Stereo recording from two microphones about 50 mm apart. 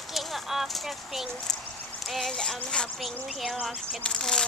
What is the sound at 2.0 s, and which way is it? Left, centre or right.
Speech, centre.